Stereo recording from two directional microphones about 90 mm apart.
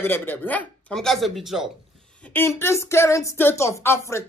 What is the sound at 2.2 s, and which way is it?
Speech, 25° left (ahead or behind).